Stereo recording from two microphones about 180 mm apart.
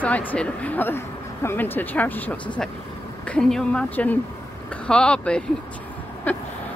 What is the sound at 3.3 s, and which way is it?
Speech, 5° left (ahead or behind).